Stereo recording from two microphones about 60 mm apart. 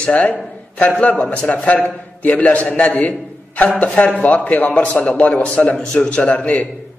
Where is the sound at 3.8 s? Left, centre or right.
Left.